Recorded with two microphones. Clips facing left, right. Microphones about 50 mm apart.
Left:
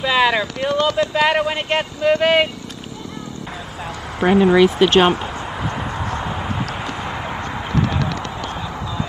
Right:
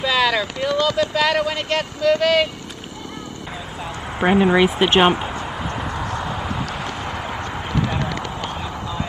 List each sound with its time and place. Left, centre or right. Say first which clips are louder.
0.0 s a sound: left 2 dB; left
0.6 s a man's voice: left 1 dB; left
4.2 s speech: left 2 dB; centre
5.4 s a sound: left 1 dB; centre
6.2 s vehicle: left 1 dB; centre
7.0 s clip-clop: left 1 dB; left
7.4 s clip-clop: left 3 dB; left